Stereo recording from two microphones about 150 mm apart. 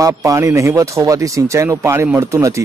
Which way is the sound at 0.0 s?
20° right (ahead or behind).